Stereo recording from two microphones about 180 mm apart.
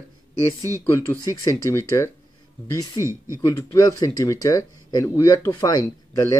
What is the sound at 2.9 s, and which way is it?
Speech, 15° right (ahead or behind).